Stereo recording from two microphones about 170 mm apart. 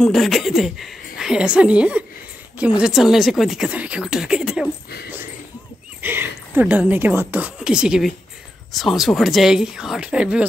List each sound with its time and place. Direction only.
0.0 s a woman's voice: centre (ahead or behind)
6.0 s a woman's voice: 10° right (ahead or behind)